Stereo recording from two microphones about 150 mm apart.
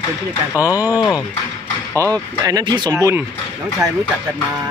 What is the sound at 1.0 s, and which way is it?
Speech, 25° left (ahead or behind).